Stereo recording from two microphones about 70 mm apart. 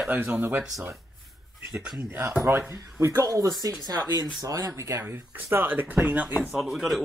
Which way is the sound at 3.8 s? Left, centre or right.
Right.